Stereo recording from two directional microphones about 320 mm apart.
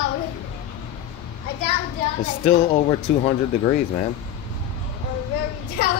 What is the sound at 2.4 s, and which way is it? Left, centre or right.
Speech, left.